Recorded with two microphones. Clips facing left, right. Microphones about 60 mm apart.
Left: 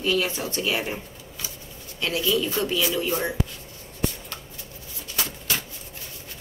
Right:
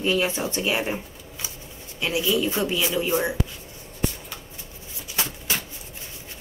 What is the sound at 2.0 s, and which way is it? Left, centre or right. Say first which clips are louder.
Speech: right 1 dB; centre.